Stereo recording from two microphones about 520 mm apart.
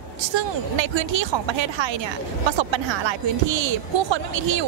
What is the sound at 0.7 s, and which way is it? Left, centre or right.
Speech, right.